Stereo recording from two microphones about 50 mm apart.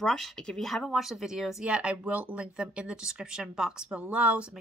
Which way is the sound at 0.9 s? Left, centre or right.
Centre.